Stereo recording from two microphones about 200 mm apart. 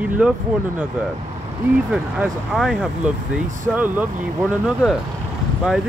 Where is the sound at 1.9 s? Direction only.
Centre (ahead or behind).